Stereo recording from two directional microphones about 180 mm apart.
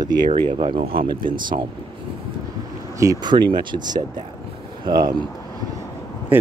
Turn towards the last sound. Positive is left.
turn(degrees=-10)  # may be behind; listen again after turning